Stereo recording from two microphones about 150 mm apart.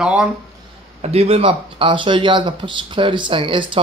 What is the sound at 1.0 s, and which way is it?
Speech, 40° right (ahead or behind).